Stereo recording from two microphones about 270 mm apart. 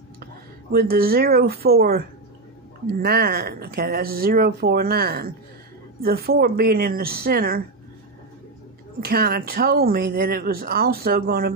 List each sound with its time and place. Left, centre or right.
0.2 s speech: right
9.0 s speech: right